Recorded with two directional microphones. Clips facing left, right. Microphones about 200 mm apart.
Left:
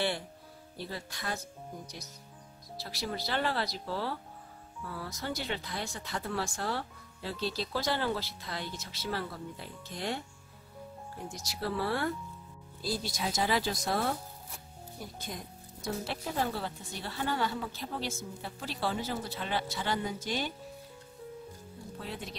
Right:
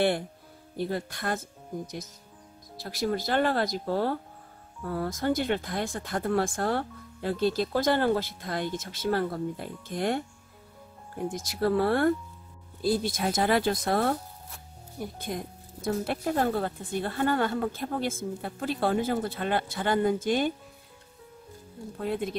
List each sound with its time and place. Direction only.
0.7 s speech: 55° right (ahead or behind)
2.8 s speech: 50° right (ahead or behind)
15.1 s speech: 55° right (ahead or behind)
21.9 s speech: 55° right (ahead or behind)